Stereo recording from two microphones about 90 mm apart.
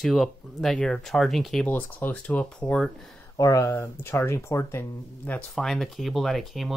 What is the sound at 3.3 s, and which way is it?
Speech, 40° left (ahead or behind).